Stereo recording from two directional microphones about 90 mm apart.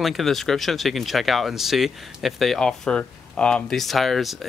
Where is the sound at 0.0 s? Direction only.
Centre (ahead or behind).